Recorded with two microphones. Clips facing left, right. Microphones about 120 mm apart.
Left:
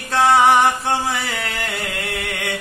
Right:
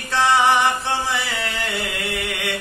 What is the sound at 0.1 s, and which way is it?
Music, 45° left (ahead or behind).